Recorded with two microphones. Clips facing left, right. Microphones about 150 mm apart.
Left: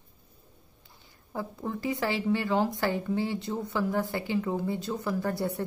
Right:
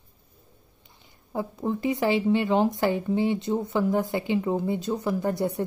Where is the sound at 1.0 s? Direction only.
20° right (ahead or behind).